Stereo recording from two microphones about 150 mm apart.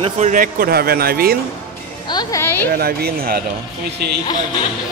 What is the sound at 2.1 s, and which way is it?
Speech, 25° left (ahead or behind).